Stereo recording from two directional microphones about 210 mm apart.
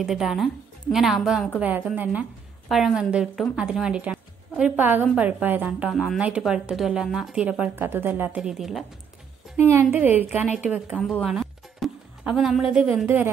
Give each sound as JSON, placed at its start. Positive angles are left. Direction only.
{"t": 0.0, "sound": "a woman's voice", "side_deg": 0}
{"t": 9.6, "sound": "a woman's voice", "side_deg": -10}
{"t": 11.0, "sound": "a sound", "side_deg": 5}
{"t": 12.7, "sound": "a woman's voice", "side_deg": -5}